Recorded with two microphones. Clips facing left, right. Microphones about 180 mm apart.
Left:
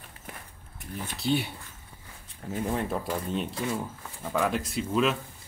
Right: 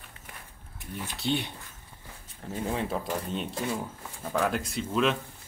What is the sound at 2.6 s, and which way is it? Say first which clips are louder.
Speech: left 1 dB; centre (ahead or behind).